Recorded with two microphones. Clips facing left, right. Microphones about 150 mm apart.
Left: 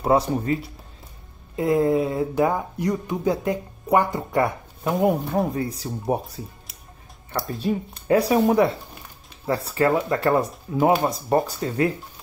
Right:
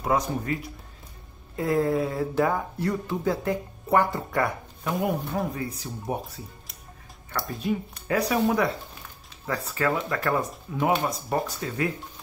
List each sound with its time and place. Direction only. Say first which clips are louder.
0.0 s speech: left 5 dB; 30° left (ahead or behind)
1.6 s speech: left 4 dB; 20° left (ahead or behind)